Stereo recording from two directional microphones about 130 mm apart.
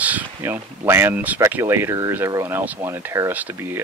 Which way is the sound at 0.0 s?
15° right (ahead or behind).